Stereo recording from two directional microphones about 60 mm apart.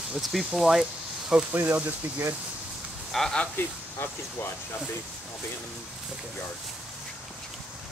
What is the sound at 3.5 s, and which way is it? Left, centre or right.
Speech, left.